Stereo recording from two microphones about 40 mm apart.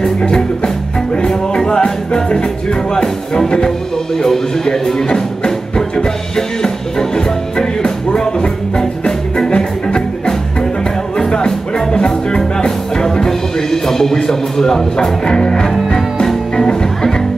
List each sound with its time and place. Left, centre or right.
0.0 s music: centre